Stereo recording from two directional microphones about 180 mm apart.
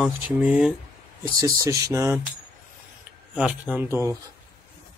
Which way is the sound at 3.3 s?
5° right (ahead or behind).